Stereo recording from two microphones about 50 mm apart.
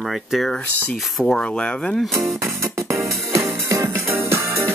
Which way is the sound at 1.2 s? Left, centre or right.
Centre.